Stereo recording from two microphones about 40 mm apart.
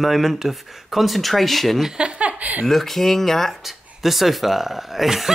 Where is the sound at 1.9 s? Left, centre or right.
Right.